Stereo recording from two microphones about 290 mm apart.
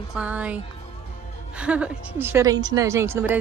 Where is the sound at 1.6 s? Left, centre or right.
Centre.